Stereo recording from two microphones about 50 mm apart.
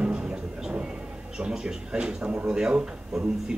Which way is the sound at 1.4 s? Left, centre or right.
Centre.